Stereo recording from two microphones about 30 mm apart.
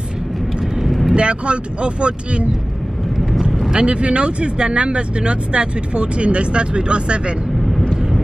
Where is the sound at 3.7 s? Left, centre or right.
Right.